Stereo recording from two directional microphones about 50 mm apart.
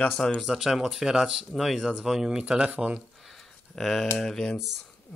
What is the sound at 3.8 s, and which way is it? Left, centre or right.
Speech, centre.